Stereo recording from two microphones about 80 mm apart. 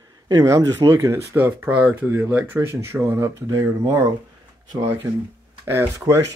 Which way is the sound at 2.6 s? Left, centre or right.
Right.